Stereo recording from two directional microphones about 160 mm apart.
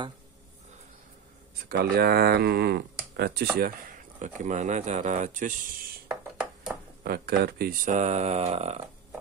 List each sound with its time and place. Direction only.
1.7 s speech: 80° right
4.2 s speech: 50° right (ahead or behind)
7.0 s speech: 75° right (ahead or behind)
7.9 s speech: 45° right (ahead or behind)